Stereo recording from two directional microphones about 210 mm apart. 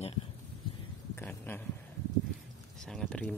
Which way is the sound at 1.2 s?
10° left (ahead or behind).